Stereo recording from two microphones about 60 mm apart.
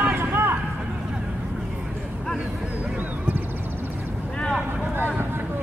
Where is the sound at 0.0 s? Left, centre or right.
Right.